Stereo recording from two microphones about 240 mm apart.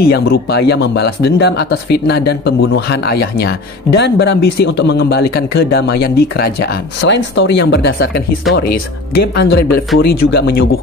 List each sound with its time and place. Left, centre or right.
0.0 s speech: left